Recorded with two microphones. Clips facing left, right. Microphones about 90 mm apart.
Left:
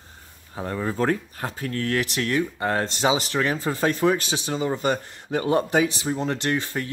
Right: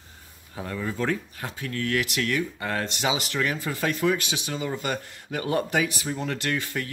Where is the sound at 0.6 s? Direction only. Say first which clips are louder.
Left 4 dB; 35° left (ahead or behind).